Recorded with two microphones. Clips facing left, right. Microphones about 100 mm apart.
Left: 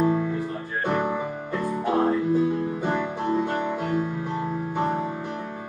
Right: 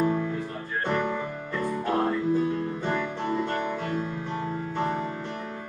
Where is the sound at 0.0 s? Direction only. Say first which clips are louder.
Left 3 dB; 10° left (ahead or behind).